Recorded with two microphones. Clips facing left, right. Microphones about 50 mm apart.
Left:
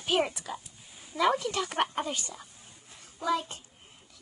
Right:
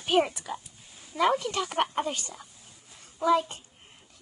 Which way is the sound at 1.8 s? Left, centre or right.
Centre.